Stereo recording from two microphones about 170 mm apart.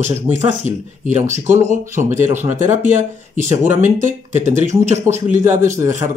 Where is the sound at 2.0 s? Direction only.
45° right (ahead or behind).